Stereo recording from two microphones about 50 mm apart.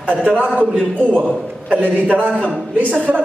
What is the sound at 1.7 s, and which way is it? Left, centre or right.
Speech, right.